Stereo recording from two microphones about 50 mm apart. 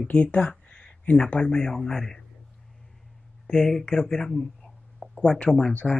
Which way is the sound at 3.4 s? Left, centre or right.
Centre.